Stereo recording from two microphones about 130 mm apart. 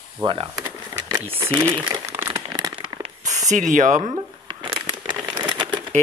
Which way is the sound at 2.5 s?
30° right (ahead or behind).